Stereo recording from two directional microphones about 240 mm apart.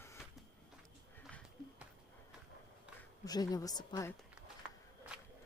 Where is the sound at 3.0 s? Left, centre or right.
Centre.